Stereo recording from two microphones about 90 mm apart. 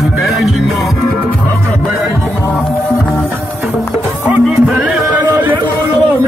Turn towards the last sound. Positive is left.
turn(degrees=-15)  # may be behind; listen again after turning